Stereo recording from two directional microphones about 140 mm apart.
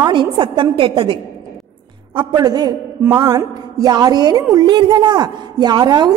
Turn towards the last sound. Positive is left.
turn(degrees=-30)  # may be behind; listen again after turning